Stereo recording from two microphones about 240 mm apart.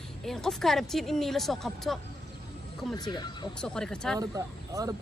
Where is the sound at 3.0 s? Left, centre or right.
Centre.